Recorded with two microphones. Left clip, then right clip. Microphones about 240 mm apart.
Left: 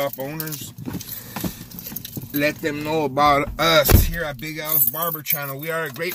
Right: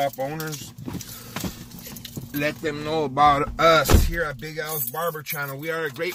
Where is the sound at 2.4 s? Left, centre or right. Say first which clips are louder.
Left 4 dB; left.